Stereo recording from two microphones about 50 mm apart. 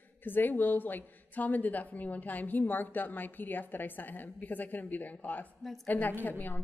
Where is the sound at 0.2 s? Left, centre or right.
Left.